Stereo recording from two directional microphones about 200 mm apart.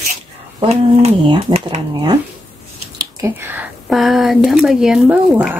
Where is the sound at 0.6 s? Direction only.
25° right (ahead or behind).